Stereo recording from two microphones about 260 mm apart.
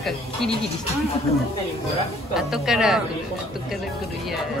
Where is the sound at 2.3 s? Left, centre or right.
Centre.